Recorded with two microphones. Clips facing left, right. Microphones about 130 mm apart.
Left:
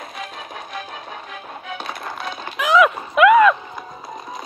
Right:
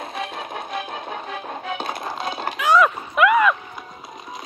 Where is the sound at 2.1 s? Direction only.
25° right (ahead or behind).